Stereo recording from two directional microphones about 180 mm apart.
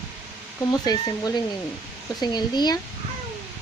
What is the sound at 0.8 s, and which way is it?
Speech, 20° left (ahead or behind).